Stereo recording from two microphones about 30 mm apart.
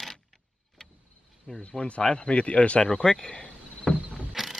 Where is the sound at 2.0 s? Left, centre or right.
Centre.